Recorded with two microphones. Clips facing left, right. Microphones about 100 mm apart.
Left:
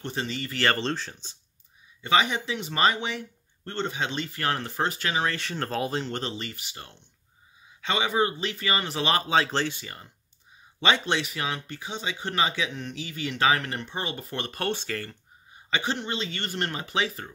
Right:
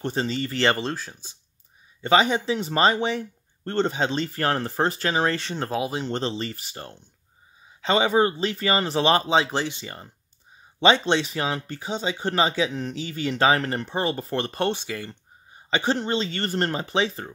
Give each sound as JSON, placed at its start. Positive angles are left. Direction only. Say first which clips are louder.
{"t": 0.0, "sound": "speech", "louder": "right 6 dB", "side_deg": -35}
{"t": 0.7, "sound": "speech", "louder": "even", "side_deg": -5}
{"t": 2.0, "sound": "speech", "louder": "right 4 dB", "side_deg": -35}
{"t": 5.6, "sound": "speech", "louder": "left 2 dB", "side_deg": -10}
{"t": 6.0, "sound": "speech", "louder": "right 5 dB", "side_deg": -30}
{"t": 9.8, "sound": "speech", "louder": "right 4 dB", "side_deg": -30}
{"t": 14.7, "sound": "speech", "louder": "right 2 dB", "side_deg": -15}
{"t": 15.7, "sound": "speech", "louder": "right 5 dB", "side_deg": -35}